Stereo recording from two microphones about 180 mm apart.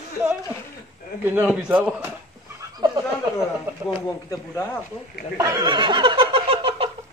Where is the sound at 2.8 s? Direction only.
20° right (ahead or behind).